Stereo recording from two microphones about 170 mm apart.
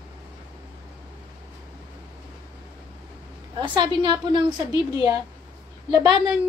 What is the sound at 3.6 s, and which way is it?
A woman's voice, 25° right (ahead or behind).